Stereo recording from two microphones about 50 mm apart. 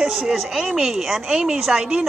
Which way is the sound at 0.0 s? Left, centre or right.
Centre.